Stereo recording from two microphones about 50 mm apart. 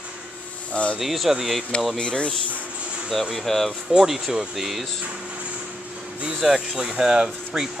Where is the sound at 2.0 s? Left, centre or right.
Centre.